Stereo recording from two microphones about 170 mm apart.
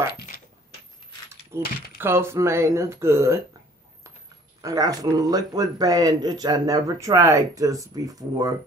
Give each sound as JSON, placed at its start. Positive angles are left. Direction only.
{"t": 1.6, "sound": "speech", "side_deg": 65}
{"t": 2.0, "sound": "speech", "side_deg": -15}
{"t": 4.6, "sound": "speech", "side_deg": -20}